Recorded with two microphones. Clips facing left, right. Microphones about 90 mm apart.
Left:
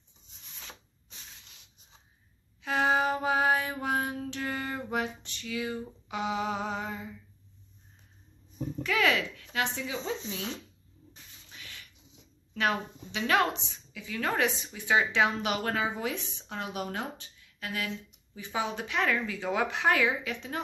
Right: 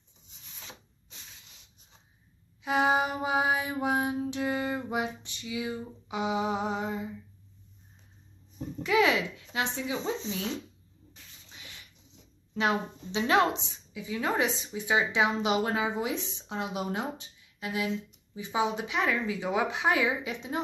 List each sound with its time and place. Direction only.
2.6 s mantra: 15° right (ahead or behind)
8.8 s speech: 20° right (ahead or behind)
11.4 s a sound: 20° right (ahead or behind)
12.5 s a woman's voice: 25° right (ahead or behind)